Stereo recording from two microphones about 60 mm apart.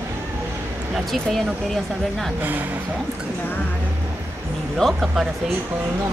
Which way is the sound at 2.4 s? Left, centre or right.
Right.